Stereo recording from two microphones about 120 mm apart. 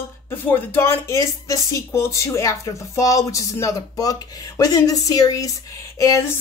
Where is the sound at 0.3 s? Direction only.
20° left (ahead or behind).